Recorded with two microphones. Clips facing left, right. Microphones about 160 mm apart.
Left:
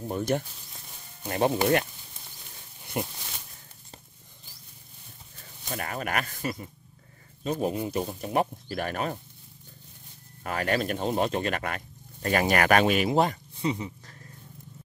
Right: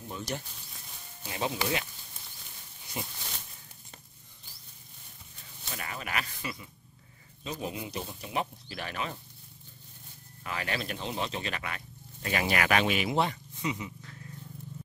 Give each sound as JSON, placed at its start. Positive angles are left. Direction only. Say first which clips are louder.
{"t": 0.1, "sound": "speech", "louder": "left 10 dB", "side_deg": 55}
{"t": 2.9, "sound": "speech", "louder": "left 8 dB", "side_deg": 60}
{"t": 5.7, "sound": "speech", "louder": "left 6 dB", "side_deg": 50}
{"t": 10.4, "sound": "speech", "louder": "left 7 dB", "side_deg": 45}